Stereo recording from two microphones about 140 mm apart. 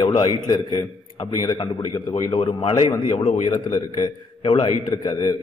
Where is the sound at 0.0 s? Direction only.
35° left (ahead or behind).